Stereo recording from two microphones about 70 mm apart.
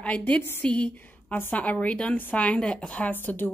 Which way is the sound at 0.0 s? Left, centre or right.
Left.